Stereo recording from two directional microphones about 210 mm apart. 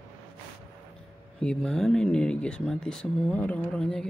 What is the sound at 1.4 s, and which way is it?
Speech, 5° left (ahead or behind).